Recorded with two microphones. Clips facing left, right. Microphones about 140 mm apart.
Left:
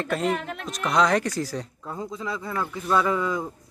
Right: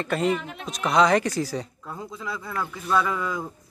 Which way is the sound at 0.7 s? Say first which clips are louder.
Right 2 dB; centre (ahead or behind).